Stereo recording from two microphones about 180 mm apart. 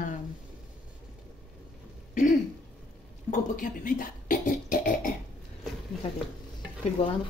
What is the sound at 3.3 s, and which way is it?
Speech, 50° left (ahead or behind).